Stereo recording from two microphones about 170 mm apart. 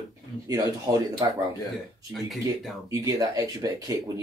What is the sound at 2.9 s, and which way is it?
Speech, 20° right (ahead or behind).